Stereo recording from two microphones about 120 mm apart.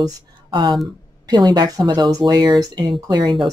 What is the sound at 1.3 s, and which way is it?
Speech, 35° right (ahead or behind).